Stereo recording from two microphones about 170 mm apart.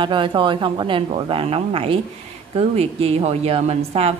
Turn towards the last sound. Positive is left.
turn(degrees=-35)  # may be behind; listen again after turning